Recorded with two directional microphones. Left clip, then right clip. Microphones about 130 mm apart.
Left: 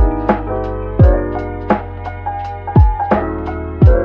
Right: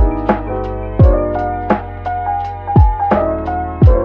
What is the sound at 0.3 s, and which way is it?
Music, centre (ahead or behind).